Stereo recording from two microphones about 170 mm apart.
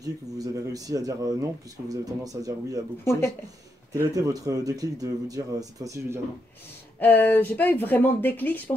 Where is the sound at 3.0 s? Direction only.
15° left (ahead or behind).